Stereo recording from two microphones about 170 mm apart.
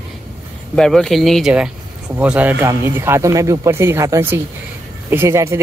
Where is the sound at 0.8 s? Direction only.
Centre (ahead or behind).